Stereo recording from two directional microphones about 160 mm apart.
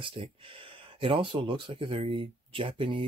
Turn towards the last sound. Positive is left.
turn(degrees=-35)  # may be behind; listen again after turning